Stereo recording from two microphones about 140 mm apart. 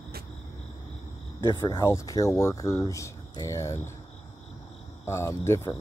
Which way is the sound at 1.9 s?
25° left (ahead or behind).